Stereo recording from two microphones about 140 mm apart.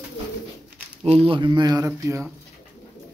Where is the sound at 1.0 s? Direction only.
45° right (ahead or behind); by 2.2 s 20° right (ahead or behind).